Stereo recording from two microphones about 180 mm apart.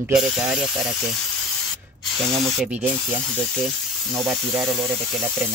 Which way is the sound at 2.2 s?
Centre (ahead or behind).